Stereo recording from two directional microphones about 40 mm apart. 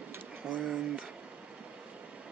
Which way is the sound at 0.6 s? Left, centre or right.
Centre.